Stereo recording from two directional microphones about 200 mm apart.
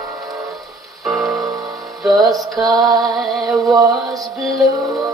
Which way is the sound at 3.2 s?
Centre (ahead or behind).